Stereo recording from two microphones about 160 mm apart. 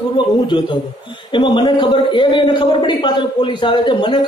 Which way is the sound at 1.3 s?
30° left (ahead or behind).